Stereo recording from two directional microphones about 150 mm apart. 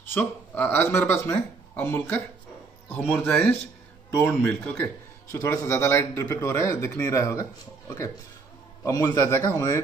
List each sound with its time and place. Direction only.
0.0 s speech: 15° left (ahead or behind)
8.8 s speech: 25° left (ahead or behind)